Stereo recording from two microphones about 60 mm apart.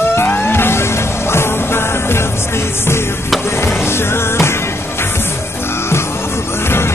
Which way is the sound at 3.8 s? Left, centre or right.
Left.